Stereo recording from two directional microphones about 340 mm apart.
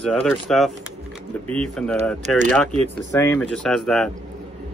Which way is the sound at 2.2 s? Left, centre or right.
Right.